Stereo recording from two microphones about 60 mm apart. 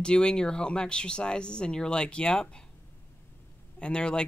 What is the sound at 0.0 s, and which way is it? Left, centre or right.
Speech, centre.